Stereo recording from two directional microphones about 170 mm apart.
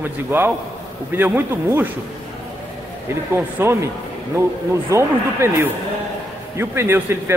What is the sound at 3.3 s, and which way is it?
Speech, 15° right (ahead or behind).